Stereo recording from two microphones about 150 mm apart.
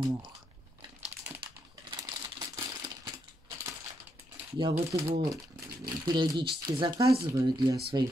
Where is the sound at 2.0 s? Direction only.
25° right (ahead or behind).